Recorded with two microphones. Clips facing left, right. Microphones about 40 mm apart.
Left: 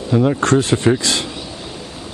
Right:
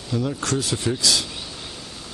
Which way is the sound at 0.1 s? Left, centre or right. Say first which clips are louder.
Left 10 dB; left.